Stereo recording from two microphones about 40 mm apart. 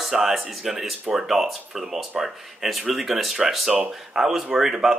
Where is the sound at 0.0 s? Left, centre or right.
Centre.